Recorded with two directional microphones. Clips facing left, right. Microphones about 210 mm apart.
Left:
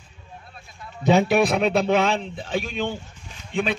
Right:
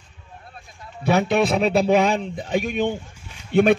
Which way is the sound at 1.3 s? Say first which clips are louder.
Right 1 dB; centre (ahead or behind).